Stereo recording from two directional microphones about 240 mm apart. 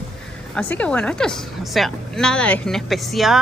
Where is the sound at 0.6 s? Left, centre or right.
Centre.